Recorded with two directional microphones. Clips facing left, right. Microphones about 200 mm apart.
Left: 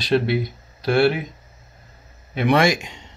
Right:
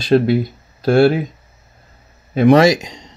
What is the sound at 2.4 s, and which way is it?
Speech, 40° right (ahead or behind).